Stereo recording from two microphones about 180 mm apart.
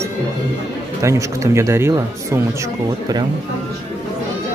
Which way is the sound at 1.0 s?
15° right (ahead or behind).